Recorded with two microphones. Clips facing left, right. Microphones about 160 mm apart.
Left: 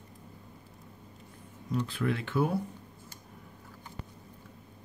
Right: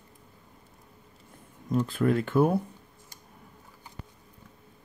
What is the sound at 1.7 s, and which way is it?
Speech, 45° right (ahead or behind).